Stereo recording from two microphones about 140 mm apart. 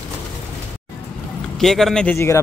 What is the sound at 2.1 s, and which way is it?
Speech, 20° left (ahead or behind).